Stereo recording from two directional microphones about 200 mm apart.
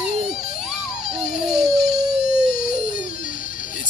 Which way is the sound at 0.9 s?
45° left (ahead or behind).